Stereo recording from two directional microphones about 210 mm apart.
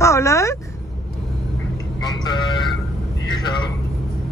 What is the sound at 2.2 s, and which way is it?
Vehicle, 20° left (ahead or behind).